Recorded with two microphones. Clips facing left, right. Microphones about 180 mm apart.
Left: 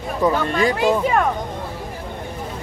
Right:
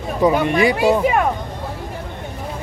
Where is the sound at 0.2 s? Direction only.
15° right (ahead or behind).